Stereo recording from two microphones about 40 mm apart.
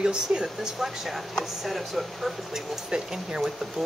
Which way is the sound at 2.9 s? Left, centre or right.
Centre.